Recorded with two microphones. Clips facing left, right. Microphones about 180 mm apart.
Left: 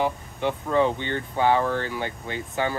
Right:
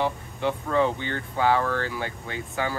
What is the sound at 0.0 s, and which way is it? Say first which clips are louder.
Speech: left 1 dB; 15° left (ahead or behind).